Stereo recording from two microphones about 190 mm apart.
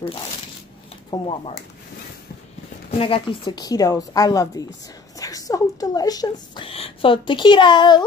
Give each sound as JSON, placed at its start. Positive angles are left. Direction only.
{"t": 1.1, "sound": "a woman's voice", "side_deg": 30}
{"t": 2.9, "sound": "a woman's voice", "side_deg": 30}